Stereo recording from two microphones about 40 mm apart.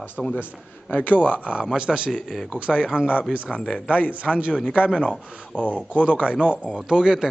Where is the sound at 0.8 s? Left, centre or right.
Left.